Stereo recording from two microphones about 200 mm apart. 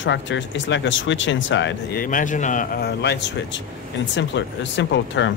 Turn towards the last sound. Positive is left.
turn(degrees=65)  # may be behind; listen again after turning